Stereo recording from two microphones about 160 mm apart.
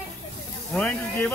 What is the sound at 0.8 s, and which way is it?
Speech, 10° left (ahead or behind).